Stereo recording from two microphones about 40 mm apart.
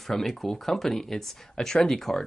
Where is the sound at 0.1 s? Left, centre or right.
Centre.